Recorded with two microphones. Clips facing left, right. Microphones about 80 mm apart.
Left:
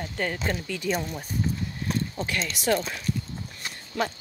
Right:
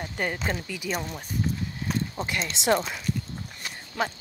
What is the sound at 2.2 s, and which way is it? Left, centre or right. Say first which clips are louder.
Speech: even; centre.